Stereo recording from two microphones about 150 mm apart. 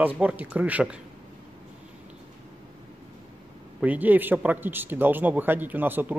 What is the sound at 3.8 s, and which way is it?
Speech, 10° right (ahead or behind).